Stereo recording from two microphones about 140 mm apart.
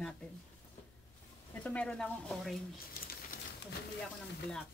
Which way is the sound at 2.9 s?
90° left.